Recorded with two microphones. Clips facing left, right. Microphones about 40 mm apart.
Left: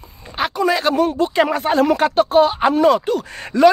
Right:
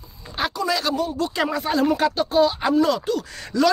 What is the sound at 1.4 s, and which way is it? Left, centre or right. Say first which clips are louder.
Speech: left 1 dB; left.